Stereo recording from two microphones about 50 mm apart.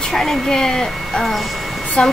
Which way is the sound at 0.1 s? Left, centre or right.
Centre.